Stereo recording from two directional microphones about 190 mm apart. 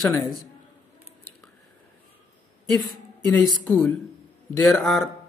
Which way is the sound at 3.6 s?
10° left (ahead or behind).